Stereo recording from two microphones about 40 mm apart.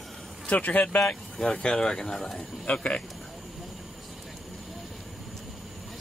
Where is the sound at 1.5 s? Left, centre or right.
Left.